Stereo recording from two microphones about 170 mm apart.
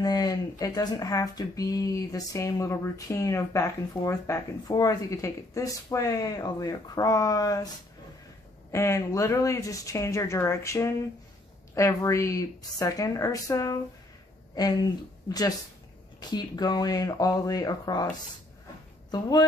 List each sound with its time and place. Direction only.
0.0 s speech: 25° left (ahead or behind)
8.7 s speech: 15° left (ahead or behind)
19.0 s speech: 25° left (ahead or behind)